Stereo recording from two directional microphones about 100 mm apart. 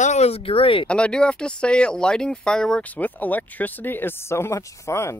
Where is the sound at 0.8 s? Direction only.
10° left (ahead or behind); by 5.1 s 30° left (ahead or behind).